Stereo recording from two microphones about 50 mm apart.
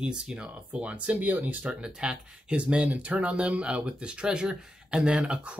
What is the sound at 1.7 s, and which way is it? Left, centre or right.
Speech, centre.